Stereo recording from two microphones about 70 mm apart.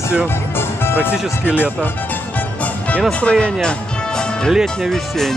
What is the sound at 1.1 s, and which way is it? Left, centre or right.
Speech, centre.